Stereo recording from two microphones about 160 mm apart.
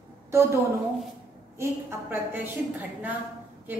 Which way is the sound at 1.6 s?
15° right (ahead or behind).